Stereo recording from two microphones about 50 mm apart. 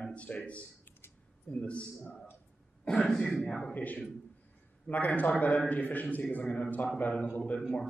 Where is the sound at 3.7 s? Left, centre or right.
Left.